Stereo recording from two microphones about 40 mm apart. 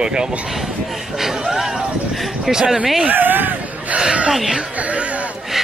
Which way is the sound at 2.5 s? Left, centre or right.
Centre.